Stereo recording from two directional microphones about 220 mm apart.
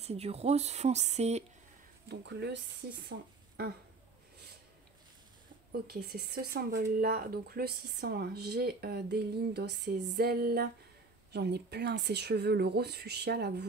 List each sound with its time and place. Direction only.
0.0 s speech: 30° right (ahead or behind)
2.0 s speech: 50° right (ahead or behind)
5.7 s speech: 45° right (ahead or behind)